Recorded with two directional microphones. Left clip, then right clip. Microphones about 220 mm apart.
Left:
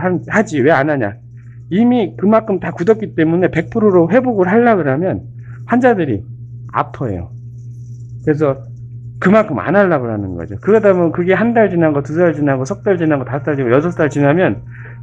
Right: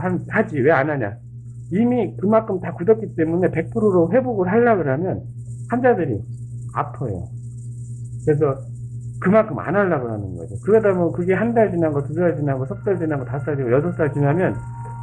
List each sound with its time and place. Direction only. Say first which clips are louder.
0.0 s a man's voice: left 6 dB; 50° left (ahead or behind)
8.3 s a man's voice: left 4 dB; 50° left (ahead or behind)